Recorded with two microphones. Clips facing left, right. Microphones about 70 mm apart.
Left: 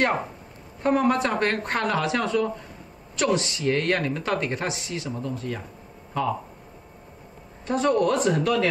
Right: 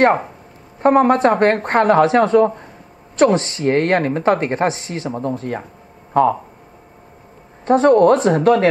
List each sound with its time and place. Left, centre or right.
0.8 s speech: right
7.6 s speech: right